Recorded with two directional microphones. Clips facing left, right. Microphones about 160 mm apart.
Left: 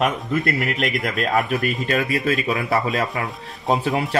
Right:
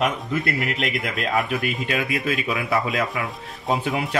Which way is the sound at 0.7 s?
45° left (ahead or behind).